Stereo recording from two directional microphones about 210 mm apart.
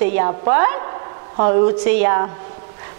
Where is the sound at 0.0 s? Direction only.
15° right (ahead or behind).